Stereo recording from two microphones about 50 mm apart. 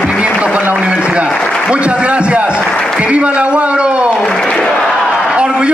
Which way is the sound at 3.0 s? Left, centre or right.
Right.